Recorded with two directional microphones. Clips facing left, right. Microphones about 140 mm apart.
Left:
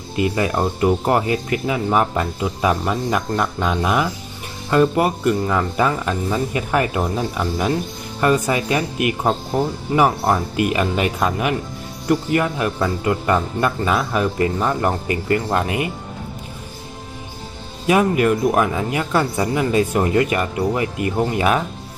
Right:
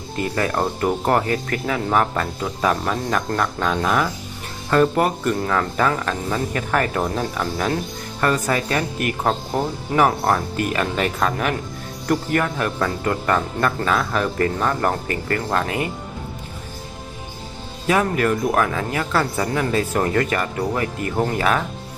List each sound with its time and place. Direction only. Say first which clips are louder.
0.2 s speech: left 2 dB; 10° left (ahead or behind)
9.9 s speech: left 1 dB; 10° left (ahead or behind)
17.8 s speech: left 3 dB; 15° left (ahead or behind)